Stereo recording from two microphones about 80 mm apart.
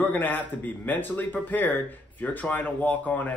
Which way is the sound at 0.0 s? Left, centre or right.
Left.